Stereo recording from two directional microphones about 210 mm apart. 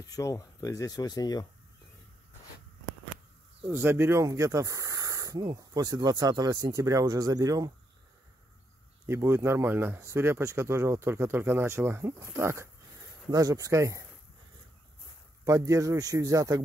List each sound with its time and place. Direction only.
0.0 s speech: 15° left (ahead or behind)
3.7 s speech: 10° right (ahead or behind)
9.0 s speech: 15° right (ahead or behind)
15.4 s speech: 15° right (ahead or behind)